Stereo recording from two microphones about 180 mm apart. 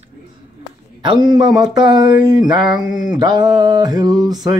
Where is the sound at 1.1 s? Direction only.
25° right (ahead or behind).